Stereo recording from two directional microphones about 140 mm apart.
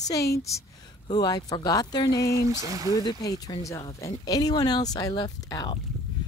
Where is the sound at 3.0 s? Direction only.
30° left (ahead or behind).